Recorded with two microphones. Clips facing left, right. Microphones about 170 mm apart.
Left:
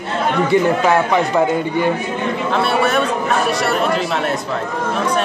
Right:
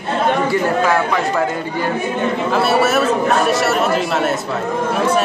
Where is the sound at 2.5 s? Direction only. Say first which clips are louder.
Right 1 dB; 5° right (ahead or behind).